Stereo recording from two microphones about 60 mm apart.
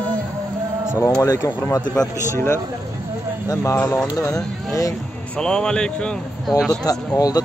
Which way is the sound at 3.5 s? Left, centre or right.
Left.